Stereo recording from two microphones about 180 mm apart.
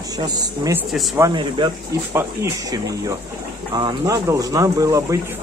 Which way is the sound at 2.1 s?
15° right (ahead or behind).